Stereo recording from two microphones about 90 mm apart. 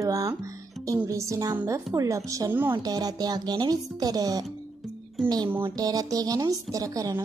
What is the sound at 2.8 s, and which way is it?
Speech, 45° right (ahead or behind).